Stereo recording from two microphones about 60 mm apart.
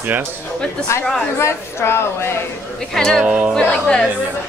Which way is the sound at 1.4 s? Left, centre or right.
Left.